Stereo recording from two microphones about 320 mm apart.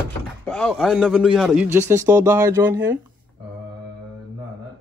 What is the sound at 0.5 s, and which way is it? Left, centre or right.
A man's voice, centre.